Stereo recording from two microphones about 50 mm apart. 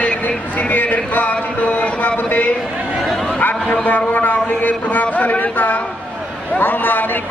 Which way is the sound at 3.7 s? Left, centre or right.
Left.